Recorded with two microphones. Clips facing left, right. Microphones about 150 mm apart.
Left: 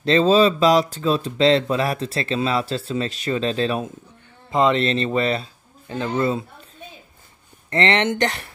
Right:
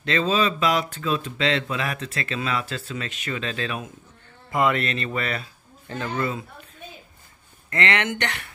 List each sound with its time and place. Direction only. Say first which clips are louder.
0.0 s speech: left 7 dB; 35° left (ahead or behind)
7.7 s speech: left 5 dB; 30° left (ahead or behind)